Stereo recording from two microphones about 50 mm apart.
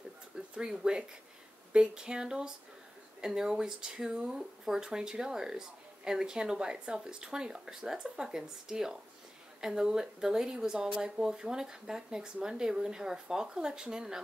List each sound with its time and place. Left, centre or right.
0.6 s speech: centre